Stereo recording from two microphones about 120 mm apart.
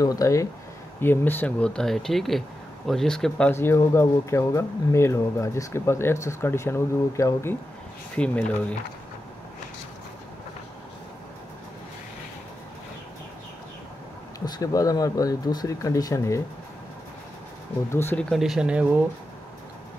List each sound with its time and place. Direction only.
0.0 s speech: 30° left (ahead or behind); by 3.5 s 5° left (ahead or behind)
3.5 s speech: 20° left (ahead or behind)
8.2 s speech: 10° left (ahead or behind)
14.4 s speech: 30° left (ahead or behind)
17.9 s speech: 20° left (ahead or behind)
18.3 s speech: centre (ahead or behind)